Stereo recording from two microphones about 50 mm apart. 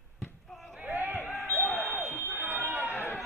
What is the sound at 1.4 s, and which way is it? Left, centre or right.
Smoke detector, left.